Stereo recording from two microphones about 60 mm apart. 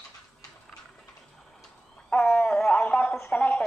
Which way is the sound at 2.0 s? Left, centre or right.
Left.